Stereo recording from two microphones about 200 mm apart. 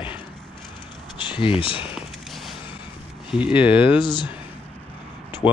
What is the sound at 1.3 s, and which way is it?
Speech, 25° left (ahead or behind).